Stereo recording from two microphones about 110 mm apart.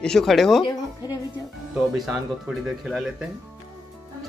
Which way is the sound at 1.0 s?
40° left (ahead or behind).